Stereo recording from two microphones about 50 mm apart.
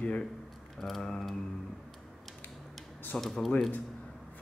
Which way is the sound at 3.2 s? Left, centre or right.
Centre.